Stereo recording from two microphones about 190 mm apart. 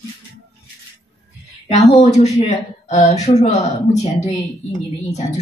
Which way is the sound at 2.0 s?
35° left (ahead or behind).